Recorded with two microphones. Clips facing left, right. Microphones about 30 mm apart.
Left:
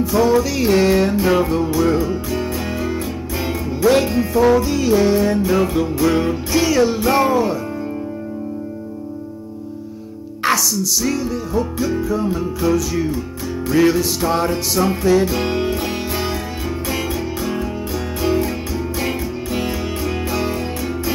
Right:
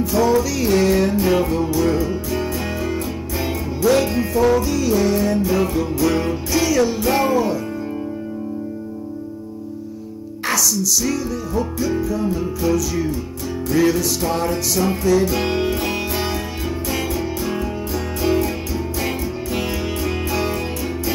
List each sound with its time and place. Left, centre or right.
0.0 s music: centre
3.8 s music: centre
4.1 s music: centre
4.6 s music: centre
10.7 s music: centre
15.3 s music: centre